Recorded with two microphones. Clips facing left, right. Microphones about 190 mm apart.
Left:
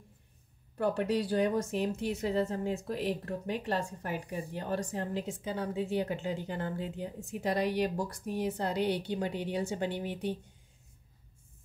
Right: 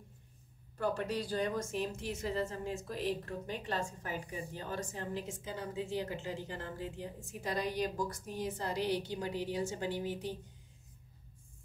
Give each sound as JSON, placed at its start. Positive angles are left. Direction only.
{"t": 0.7, "sound": "speech", "side_deg": 65}